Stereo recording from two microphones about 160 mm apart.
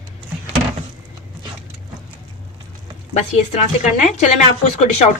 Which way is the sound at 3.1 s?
50° left (ahead or behind).